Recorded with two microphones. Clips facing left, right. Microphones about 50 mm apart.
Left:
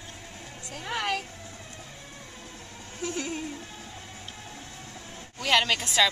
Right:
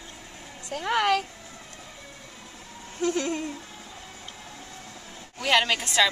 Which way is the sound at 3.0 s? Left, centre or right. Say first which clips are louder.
Right 6 dB; right.